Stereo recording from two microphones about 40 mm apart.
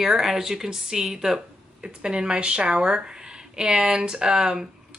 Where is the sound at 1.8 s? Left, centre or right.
Right.